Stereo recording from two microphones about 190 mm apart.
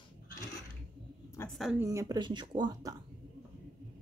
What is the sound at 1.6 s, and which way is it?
Speech, 5° right (ahead or behind).